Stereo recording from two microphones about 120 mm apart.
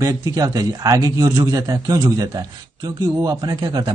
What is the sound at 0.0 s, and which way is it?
A man's voice, 30° right (ahead or behind).